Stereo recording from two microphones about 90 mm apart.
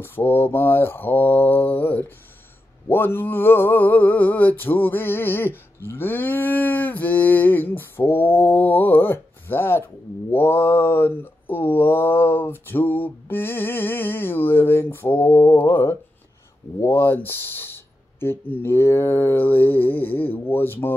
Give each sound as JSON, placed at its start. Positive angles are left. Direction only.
{"t": 0.0, "sound": "mantra", "side_deg": 20}